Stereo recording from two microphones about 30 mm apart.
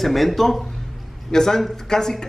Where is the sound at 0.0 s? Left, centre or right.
Centre.